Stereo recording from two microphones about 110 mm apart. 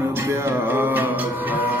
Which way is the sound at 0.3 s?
20° right (ahead or behind).